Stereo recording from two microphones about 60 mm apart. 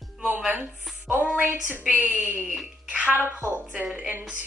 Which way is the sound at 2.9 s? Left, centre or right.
Centre.